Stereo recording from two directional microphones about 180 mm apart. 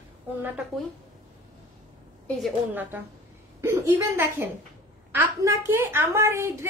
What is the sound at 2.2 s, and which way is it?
Speech, centre (ahead or behind).